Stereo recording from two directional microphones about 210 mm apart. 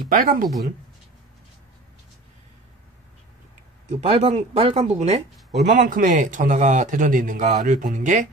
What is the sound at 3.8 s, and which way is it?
Speech, 30° right (ahead or behind).